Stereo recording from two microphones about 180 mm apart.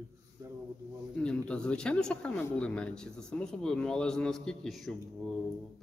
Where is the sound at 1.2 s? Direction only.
5° left (ahead or behind).